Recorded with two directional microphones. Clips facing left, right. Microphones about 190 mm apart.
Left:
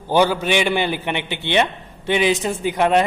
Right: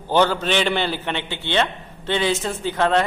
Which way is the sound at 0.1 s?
10° left (ahead or behind).